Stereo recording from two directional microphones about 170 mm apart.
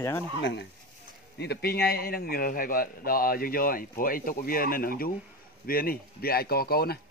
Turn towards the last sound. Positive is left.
turn(degrees=65)  # may be behind; listen again after turning